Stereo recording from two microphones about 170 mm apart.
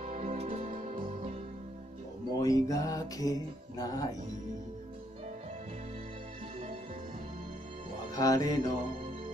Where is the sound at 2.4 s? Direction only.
20° left (ahead or behind).